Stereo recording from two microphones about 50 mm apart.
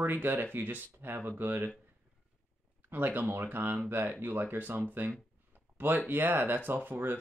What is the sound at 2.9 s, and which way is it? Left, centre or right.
Speech, right.